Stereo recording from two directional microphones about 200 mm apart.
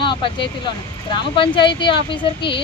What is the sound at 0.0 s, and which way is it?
Speech, 25° left (ahead or behind).